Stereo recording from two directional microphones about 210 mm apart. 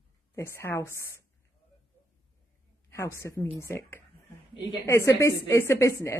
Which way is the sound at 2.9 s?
15° left (ahead or behind).